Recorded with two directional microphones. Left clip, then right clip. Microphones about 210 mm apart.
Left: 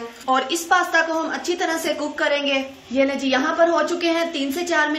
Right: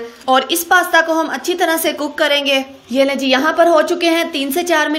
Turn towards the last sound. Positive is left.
turn(degrees=-45)  # may be behind; listen again after turning